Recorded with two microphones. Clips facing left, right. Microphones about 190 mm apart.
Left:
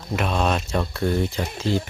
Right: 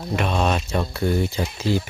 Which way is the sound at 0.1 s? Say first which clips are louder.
Right 1 dB; centre (ahead or behind).